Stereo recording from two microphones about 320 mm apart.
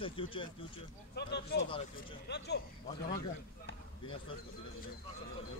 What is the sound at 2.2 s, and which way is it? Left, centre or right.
Speech, left.